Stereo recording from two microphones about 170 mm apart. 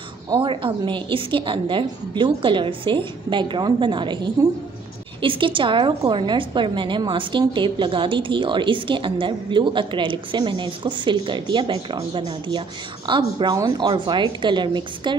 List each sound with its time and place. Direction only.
0.3 s a woman's voice: 30° right (ahead or behind)